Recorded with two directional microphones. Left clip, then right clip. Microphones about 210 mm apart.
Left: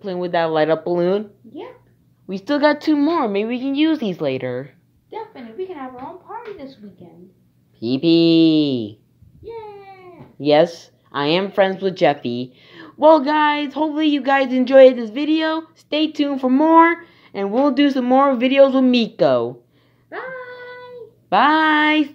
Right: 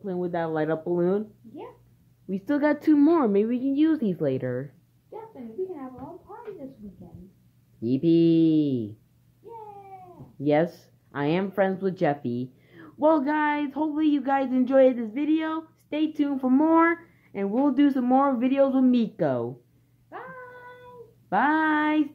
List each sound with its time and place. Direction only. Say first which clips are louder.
0.0 s speech: left 9 dB; 5° right (ahead or behind)
2.2 s a woman's voice: left 8 dB; 15° right (ahead or behind)
2.8 s a woman's voice: left 3 dB; 25° right (ahead or behind)
7.8 s a woman's voice: left 6 dB; 15° right (ahead or behind)
10.4 s a woman's voice: left 9 dB; 15° right (ahead or behind)
21.3 s speech: left 8 dB; 5° right (ahead or behind)